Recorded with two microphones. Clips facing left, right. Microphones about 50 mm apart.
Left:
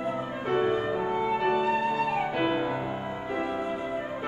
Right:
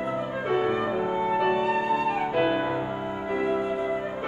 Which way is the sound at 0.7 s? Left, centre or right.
Centre.